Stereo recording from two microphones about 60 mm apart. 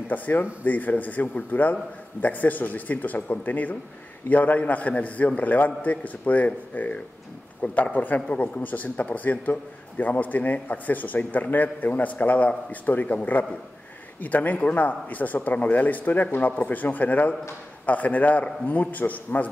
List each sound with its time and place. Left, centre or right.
0.1 s a man's voice: left